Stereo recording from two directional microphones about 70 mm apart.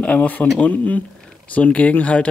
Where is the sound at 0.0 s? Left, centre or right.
Left.